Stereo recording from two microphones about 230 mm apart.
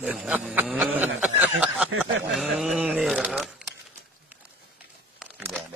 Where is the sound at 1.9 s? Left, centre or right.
Right.